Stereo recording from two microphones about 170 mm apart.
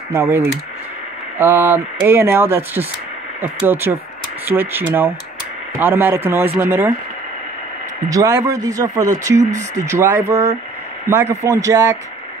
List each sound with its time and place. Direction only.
0.1 s speech: 15° right (ahead or behind)
8.1 s speech: 20° right (ahead or behind)